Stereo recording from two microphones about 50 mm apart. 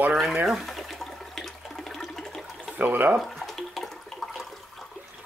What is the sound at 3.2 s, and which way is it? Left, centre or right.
Water, centre.